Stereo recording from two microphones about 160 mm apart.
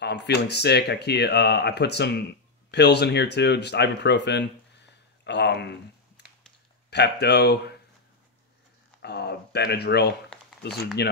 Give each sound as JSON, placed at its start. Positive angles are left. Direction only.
{"t": 0.0, "sound": "speech", "side_deg": 90}
{"t": 9.0, "sound": "speech", "side_deg": 90}